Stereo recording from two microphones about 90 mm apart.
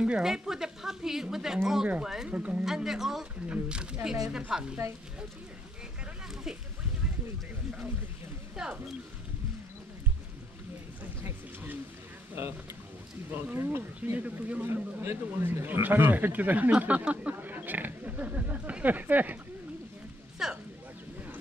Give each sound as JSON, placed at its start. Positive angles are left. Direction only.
{"t": 0.0, "sound": "speech", "side_deg": -10}
{"t": 2.6, "sound": "speech", "side_deg": -5}
{"t": 8.6, "sound": "speech", "side_deg": -10}
{"t": 11.2, "sound": "a sound", "side_deg": -20}
{"t": 12.4, "sound": "speech", "side_deg": -30}
{"t": 20.4, "sound": "a sound", "side_deg": -5}